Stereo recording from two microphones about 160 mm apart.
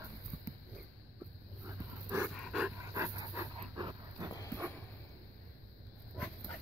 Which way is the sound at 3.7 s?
25° right (ahead or behind).